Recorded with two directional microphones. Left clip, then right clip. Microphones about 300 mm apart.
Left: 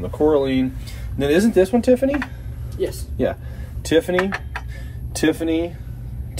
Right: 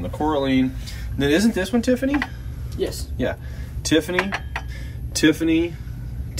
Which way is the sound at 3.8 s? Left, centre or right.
Centre.